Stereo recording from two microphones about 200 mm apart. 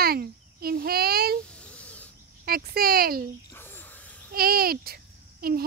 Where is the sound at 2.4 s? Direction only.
50° right (ahead or behind).